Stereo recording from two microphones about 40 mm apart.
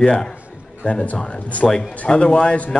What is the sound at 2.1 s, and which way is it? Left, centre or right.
Speech, left.